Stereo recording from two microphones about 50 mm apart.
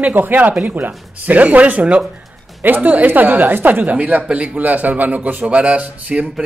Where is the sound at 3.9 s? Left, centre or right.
Right.